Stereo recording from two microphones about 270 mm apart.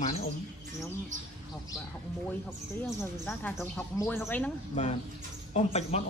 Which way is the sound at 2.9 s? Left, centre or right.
Centre.